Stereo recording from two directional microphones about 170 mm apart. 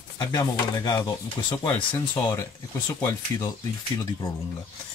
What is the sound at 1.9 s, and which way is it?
Speech, 15° left (ahead or behind).